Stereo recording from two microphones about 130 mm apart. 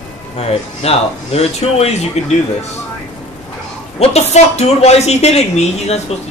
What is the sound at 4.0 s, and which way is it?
Speech, 55° left (ahead or behind).